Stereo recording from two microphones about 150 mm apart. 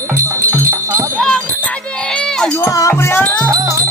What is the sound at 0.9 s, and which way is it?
Jingle bell, 20° right (ahead or behind).